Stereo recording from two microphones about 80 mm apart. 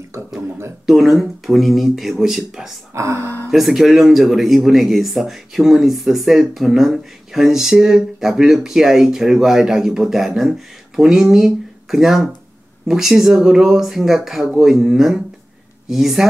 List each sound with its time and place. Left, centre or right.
0.8 s speech: centre
2.9 s speech: right
3.4 s speech: centre